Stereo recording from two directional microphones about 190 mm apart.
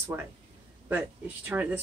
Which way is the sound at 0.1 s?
10° right (ahead or behind).